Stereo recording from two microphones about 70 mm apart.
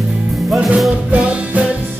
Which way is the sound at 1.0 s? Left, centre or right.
Centre.